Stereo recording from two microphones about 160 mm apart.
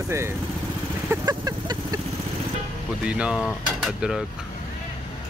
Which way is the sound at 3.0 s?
5° right (ahead or behind).